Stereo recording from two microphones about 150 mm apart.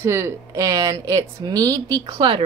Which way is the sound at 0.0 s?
20° right (ahead or behind).